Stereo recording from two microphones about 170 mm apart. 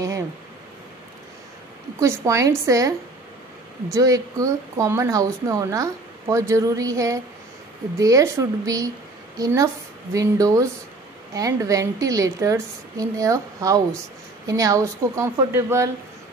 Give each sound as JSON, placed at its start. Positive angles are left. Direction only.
{"t": 2.0, "sound": "a woman's voice", "side_deg": -20}
{"t": 3.9, "sound": "a woman's voice", "side_deg": -20}